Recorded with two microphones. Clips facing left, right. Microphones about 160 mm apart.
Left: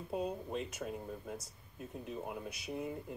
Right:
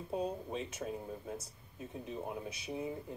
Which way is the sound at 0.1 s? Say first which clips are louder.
Even; centre (ahead or behind).